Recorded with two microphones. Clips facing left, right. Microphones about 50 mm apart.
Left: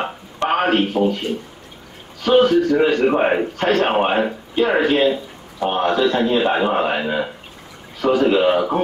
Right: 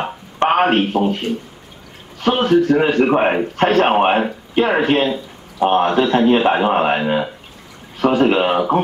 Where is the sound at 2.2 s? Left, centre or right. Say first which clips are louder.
Left 1 dB; right.